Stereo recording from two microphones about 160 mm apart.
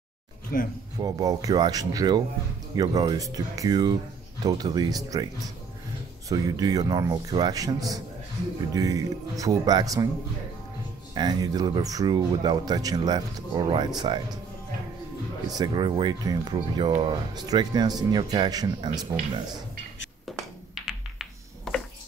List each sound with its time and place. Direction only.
0.9 s speech: 25° right (ahead or behind)
6.2 s speech: 25° right (ahead or behind)
11.1 s speech: 25° right (ahead or behind)
15.5 s speech: 25° right (ahead or behind)
20.3 s tap: centre (ahead or behind)
20.8 s a sound: centre (ahead or behind)